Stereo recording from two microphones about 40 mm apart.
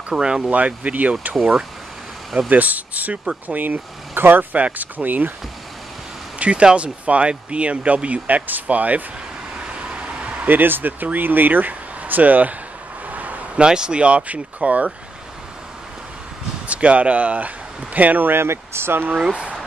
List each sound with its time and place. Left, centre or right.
0.1 s speech: right
0.5 s speech: right
2.5 s speech: right
4.6 s speech: right
6.4 s speech: right
9.7 s vehicle: right
10.5 s speech: right
13.1 s a sound: right
13.6 s speech: right
16.6 s speech: right
18.3 s speech: right